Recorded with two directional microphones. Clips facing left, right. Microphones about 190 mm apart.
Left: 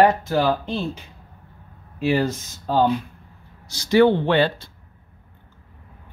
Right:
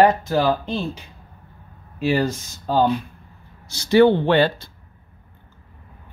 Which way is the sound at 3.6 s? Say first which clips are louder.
Right 2 dB; 25° right (ahead or behind).